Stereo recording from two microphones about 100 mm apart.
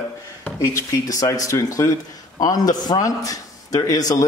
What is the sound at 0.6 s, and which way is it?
Speech, 35° left (ahead or behind).